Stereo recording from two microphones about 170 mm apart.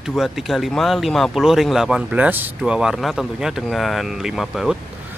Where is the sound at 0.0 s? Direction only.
Centre (ahead or behind).